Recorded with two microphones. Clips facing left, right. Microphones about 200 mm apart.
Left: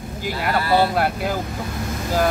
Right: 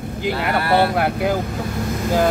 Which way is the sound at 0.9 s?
15° right (ahead or behind).